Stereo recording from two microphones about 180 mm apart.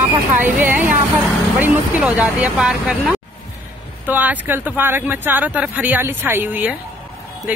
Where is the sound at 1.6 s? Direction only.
10° right (ahead or behind).